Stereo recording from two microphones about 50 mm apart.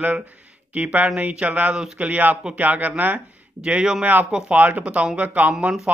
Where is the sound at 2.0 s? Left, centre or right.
Right.